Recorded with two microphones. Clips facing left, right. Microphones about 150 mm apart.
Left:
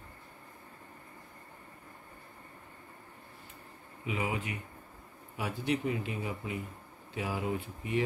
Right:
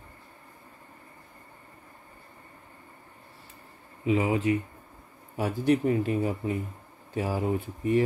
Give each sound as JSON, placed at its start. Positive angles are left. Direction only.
{"t": 4.0, "sound": "speech", "side_deg": -30}
{"t": 5.4, "sound": "speech", "side_deg": -45}